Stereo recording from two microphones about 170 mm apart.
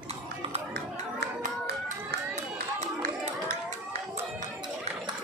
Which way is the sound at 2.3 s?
45° right (ahead or behind).